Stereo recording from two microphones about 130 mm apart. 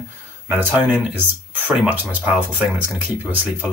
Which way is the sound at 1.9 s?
15° right (ahead or behind).